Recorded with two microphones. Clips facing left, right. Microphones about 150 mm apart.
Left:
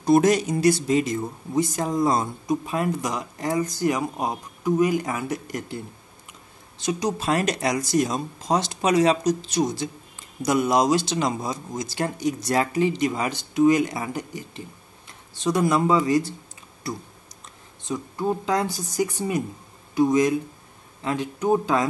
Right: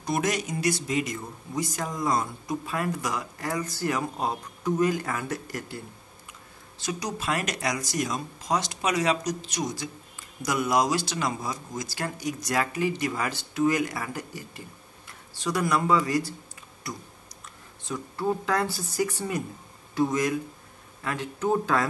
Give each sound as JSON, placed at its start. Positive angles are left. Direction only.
{"t": 0.0, "sound": "speech", "side_deg": 30}
{"t": 6.8, "sound": "speech", "side_deg": 20}
{"t": 17.8, "sound": "speech", "side_deg": 15}